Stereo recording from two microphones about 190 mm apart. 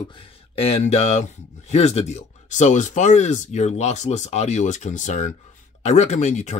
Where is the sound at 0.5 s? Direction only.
30° left (ahead or behind).